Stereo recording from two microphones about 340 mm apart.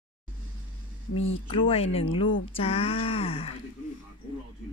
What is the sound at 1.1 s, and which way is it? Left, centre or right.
Speech, left.